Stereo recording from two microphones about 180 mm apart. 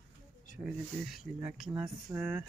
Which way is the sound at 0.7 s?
5° right (ahead or behind).